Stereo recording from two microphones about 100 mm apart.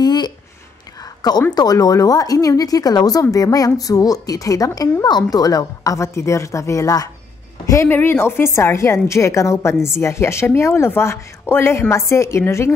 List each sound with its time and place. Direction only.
0.0 s a sound: 45° left (ahead or behind)
1.5 s speech: 40° left (ahead or behind)
7.9 s a woman's voice: 20° left (ahead or behind)